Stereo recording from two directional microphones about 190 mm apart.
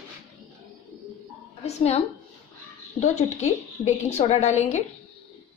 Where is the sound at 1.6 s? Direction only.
35° left (ahead or behind).